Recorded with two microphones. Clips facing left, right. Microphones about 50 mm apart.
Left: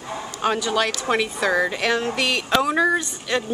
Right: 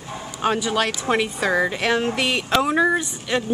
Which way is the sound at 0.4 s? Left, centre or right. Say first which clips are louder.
Even; centre.